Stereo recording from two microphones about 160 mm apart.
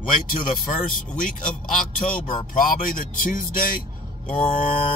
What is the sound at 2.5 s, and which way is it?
Speech, 60° left (ahead or behind).